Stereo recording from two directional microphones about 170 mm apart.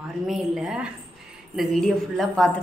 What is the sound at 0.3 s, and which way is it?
A woman's voice, 5° right (ahead or behind).